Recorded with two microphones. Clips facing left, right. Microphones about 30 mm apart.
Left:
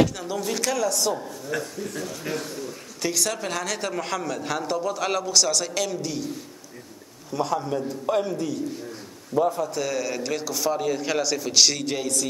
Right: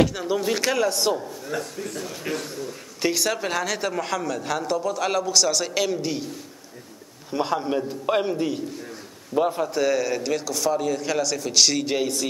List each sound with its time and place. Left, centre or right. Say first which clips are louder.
0.0 s speech: right 2 dB; centre
2.3 s a man's voice: right 1 dB; right
3.0 s a man's voice: right 3 dB; centre
5.8 s speech: right 3 dB; centre
7.2 s a man's voice: right 1 dB; right
9.8 s a man's voice: right 4 dB; centre
11.8 s speech: right 2 dB; centre